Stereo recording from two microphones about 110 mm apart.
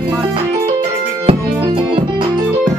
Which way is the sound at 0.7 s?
50° right (ahead or behind).